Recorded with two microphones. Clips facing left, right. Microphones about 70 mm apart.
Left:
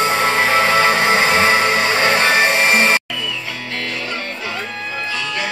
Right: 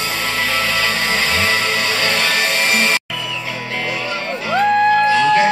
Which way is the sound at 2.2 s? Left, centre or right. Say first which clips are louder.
Left 4 dB; left.